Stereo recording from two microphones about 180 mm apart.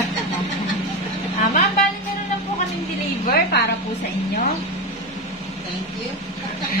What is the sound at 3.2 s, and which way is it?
Speech, 60° left (ahead or behind).